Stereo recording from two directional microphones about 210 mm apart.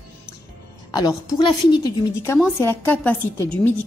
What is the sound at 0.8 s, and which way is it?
A woman's voice, 20° left (ahead or behind).